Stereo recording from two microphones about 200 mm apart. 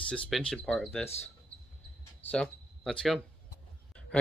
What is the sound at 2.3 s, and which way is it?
Speech, 5° left (ahead or behind).